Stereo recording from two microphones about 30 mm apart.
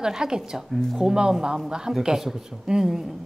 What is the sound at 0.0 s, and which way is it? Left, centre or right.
Speech, right.